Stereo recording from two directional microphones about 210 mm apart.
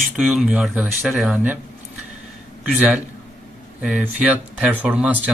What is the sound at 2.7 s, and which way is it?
Speech, 5° right (ahead or behind).